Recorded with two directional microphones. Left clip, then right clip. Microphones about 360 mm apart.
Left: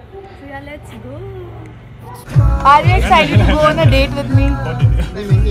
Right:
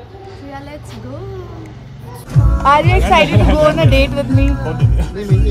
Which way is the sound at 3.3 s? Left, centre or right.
Right.